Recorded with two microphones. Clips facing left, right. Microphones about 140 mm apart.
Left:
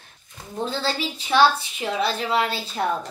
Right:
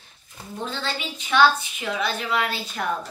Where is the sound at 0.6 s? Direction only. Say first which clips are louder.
Left 4 dB; 35° left (ahead or behind).